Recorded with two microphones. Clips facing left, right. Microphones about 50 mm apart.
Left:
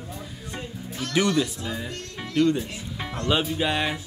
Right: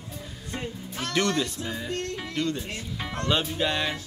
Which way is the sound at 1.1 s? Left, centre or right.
Centre.